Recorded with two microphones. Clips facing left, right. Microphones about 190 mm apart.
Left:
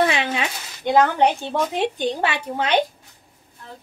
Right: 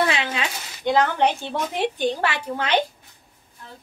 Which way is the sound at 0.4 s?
15° left (ahead or behind).